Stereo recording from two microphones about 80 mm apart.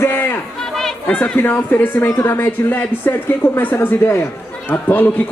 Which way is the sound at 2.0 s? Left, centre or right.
Left.